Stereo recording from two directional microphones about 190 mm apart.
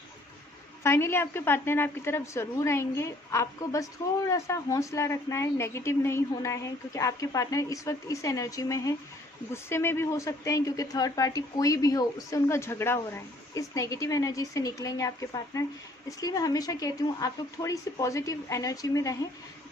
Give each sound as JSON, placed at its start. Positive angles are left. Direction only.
{"t": 0.8, "sound": "a woman's voice", "side_deg": 15}